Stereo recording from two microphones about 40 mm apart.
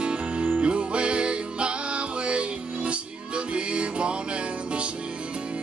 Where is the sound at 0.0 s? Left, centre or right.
Right.